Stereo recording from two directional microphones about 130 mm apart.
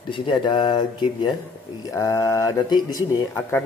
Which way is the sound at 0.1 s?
40° left (ahead or behind).